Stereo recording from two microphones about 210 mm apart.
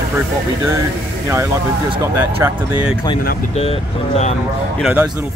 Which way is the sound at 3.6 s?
30° left (ahead or behind).